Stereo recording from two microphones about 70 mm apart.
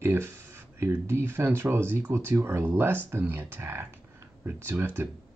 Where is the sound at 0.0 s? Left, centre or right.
Right.